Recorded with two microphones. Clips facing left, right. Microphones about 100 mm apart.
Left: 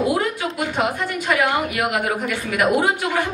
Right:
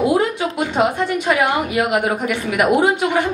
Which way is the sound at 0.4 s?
20° right (ahead or behind).